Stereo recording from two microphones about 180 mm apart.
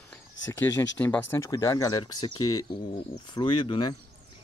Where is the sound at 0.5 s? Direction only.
10° left (ahead or behind).